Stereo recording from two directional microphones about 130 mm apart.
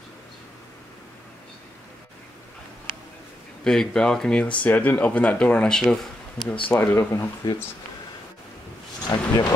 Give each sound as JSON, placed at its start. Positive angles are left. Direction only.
{"t": 3.6, "sound": "speech", "side_deg": 5}
{"t": 6.4, "sound": "speech", "side_deg": 40}
{"t": 6.7, "sound": "speech", "side_deg": 20}
{"t": 9.1, "sound": "speech", "side_deg": 30}